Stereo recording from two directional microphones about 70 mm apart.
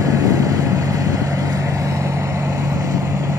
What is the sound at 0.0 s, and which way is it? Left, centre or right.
Vehicle, right.